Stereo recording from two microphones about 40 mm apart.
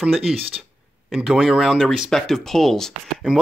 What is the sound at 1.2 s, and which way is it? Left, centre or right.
Speech, centre.